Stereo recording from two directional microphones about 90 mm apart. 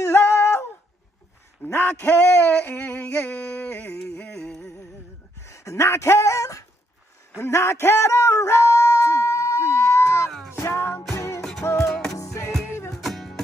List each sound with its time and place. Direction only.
0.0 s humming: 30° left (ahead or behind)
1.6 s a sound: 25° left (ahead or behind)
4.5 s music: 5° left (ahead or behind)
5.4 s speech: 35° left (ahead or behind)
7.3 s a sound: 30° left (ahead or behind)
10.5 s music: 30° left (ahead or behind)
12.9 s music: centre (ahead or behind)